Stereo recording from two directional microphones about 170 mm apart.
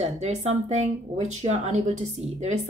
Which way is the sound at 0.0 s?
40° right (ahead or behind).